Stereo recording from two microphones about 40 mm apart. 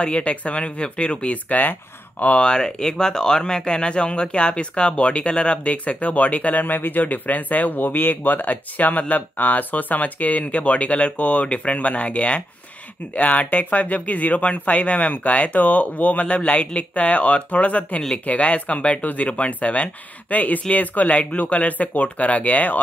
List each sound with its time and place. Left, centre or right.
0.0 s speech: left
2.3 s speech: left
18.9 s speech: left
19.2 s speech: left